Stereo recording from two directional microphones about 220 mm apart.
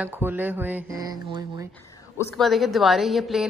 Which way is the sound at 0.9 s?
20° right (ahead or behind).